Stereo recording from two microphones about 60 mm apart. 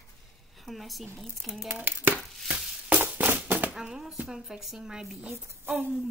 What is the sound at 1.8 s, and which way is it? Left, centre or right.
Speech, right.